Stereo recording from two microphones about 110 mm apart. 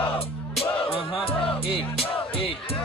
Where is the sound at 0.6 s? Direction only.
60° left (ahead or behind).